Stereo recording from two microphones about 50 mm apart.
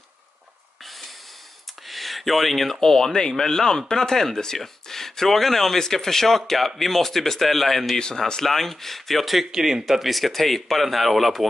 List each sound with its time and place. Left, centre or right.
1.9 s speech: centre
8.0 s speech: centre